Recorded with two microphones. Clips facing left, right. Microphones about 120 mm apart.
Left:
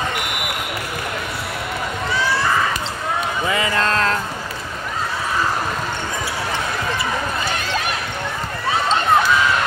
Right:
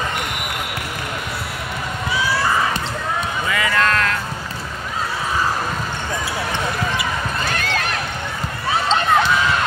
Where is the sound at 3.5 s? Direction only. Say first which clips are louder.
Right 1 dB; 25° left (ahead or behind).